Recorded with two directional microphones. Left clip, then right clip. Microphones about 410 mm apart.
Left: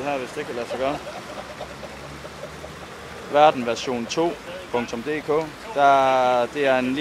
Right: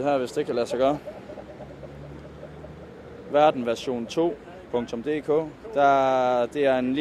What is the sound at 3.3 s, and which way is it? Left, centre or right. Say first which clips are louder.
Speech: left 3 dB; centre.